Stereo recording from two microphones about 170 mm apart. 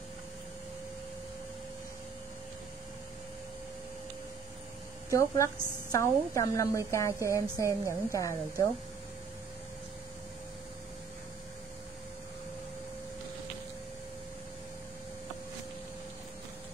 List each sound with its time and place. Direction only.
5.1 s a woman's voice: 20° left (ahead or behind)
7.6 s a woman's voice: 15° right (ahead or behind)
8.2 s a woman's voice: 20° left (ahead or behind)